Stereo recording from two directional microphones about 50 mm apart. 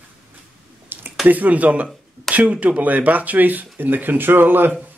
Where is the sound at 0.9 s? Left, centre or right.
Right.